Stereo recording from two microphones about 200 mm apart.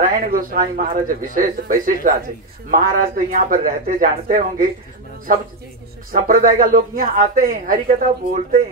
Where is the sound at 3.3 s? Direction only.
45° right (ahead or behind).